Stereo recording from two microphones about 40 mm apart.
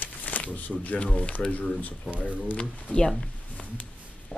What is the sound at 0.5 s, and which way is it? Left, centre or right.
Speech, left.